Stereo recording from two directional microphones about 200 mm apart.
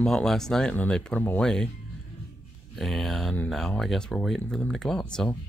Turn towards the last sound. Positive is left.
turn(degrees=5)  # may be behind; listen again after turning